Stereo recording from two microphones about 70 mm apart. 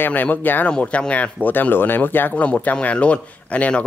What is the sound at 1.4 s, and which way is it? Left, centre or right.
Speech, left.